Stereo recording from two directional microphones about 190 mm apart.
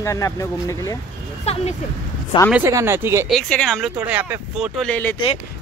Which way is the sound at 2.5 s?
15° right (ahead or behind).